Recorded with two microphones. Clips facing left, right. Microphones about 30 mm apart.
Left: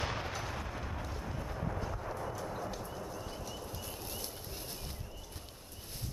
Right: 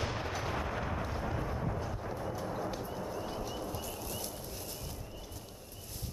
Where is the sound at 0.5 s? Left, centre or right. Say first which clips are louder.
Right 5 dB; centre.